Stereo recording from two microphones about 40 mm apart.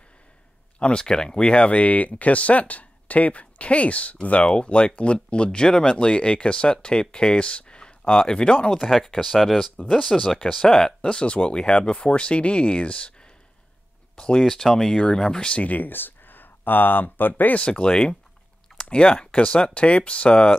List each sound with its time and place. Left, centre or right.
0.7 s speech: left
5.7 s speech: centre
5.9 s speech: left
9.0 s speech: centre
9.8 s speech: left
11.1 s speech: left
14.5 s speech: centre
15.0 s speech: left
15.6 s speech: left
17.6 s speech: left